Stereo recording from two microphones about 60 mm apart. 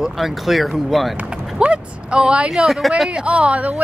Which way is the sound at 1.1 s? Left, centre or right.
Right.